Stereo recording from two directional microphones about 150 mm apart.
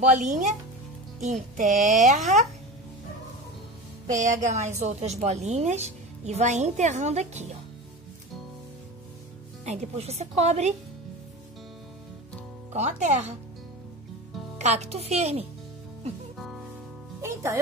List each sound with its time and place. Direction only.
0.1 s a woman's voice: 55° right (ahead or behind)
4.1 s a woman's voice: 55° right (ahead or behind)
9.7 s a woman's voice: 45° right (ahead or behind)
12.7 s a woman's voice: 50° right (ahead or behind)
14.6 s a woman's voice: 50° right (ahead or behind)
16.3 s music: centre (ahead or behind)
17.2 s music: 20° right (ahead or behind)